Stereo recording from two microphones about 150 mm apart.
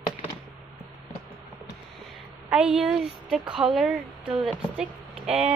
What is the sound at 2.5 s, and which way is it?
Speech, 5° right (ahead or behind).